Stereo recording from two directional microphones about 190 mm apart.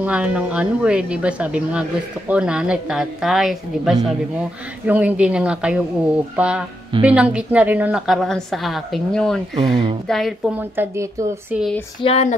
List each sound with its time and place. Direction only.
0.0 s a woman's voice: 5° right (ahead or behind)
12.0 s speech: 35° left (ahead or behind)